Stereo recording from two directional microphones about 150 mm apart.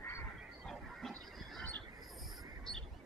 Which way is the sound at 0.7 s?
5° left (ahead or behind).